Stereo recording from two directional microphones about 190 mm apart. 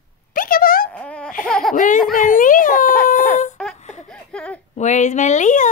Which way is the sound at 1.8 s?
45° left (ahead or behind).